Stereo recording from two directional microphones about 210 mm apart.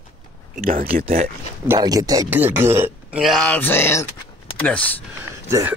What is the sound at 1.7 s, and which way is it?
Speech, 15° right (ahead or behind).